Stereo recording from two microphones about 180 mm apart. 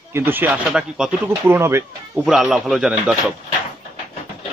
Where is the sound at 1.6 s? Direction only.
15° right (ahead or behind).